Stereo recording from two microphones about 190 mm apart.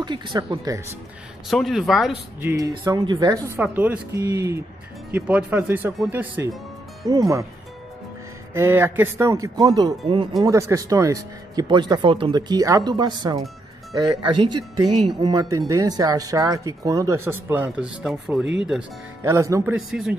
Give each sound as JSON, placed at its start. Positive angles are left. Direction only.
{"t": 0.0, "sound": "speech", "side_deg": -25}
{"t": 1.5, "sound": "speech", "side_deg": 0}
{"t": 2.5, "sound": "speech", "side_deg": -20}
{"t": 3.5, "sound": "speech", "side_deg": -10}
{"t": 8.5, "sound": "speech", "side_deg": -10}
{"t": 18.4, "sound": "speech", "side_deg": -70}
{"t": 19.2, "sound": "speech", "side_deg": -15}